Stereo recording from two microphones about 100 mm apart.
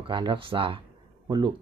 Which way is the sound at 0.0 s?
55° right (ahead or behind).